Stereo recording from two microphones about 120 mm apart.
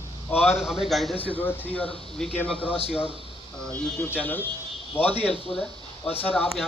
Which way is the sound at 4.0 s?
15° left (ahead or behind).